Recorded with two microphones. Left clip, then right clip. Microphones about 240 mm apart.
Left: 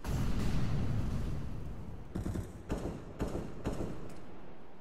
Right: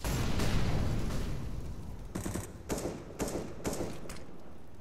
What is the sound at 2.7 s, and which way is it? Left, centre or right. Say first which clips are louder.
Thump: right 4 dB; right.